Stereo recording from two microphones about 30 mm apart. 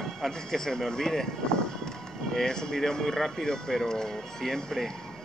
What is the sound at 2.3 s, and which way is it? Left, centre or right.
Speech, left.